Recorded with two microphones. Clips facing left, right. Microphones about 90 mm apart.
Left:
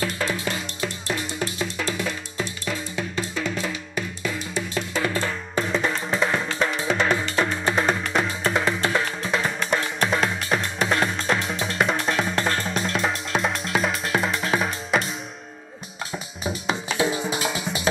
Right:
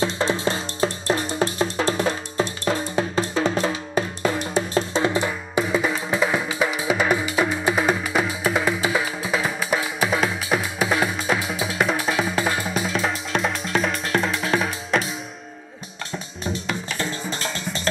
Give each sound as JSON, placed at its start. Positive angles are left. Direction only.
{"t": 0.0, "sound": "music", "side_deg": -30}
{"t": 4.9, "sound": "music", "side_deg": -20}
{"t": 16.6, "sound": "music", "side_deg": 15}